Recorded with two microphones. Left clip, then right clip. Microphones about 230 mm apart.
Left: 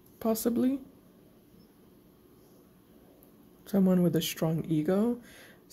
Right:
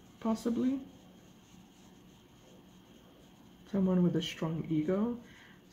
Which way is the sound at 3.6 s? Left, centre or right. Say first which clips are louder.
Left 5 dB; left.